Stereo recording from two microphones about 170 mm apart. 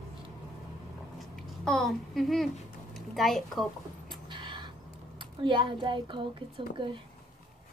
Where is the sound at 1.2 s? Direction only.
Centre (ahead or behind).